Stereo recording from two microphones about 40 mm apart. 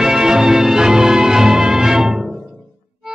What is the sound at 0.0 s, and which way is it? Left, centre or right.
Music, centre.